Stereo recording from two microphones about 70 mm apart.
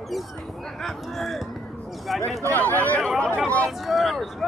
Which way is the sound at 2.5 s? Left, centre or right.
Left.